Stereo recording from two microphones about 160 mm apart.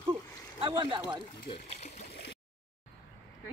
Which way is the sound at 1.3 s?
75° left (ahead or behind).